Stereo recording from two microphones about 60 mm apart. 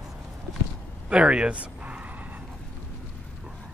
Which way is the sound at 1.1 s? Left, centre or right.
Centre.